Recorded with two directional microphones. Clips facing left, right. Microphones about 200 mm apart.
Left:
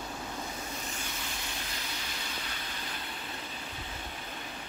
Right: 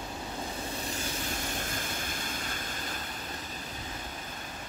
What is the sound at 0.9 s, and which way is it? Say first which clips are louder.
Vehicle: right 5 dB; 45° right (ahead or behind).